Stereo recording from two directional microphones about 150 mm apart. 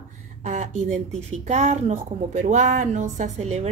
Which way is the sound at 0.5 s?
55° right (ahead or behind).